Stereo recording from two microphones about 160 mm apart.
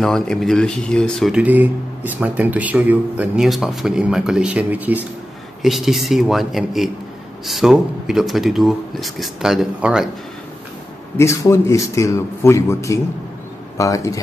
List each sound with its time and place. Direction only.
0.0 s speech: 5° left (ahead or behind)
1.4 s speech: 10° right (ahead or behind)
11.1 s a man's voice: 15° left (ahead or behind)